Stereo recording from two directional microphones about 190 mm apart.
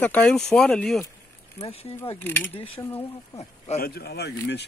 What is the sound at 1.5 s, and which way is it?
Speech, 30° left (ahead or behind).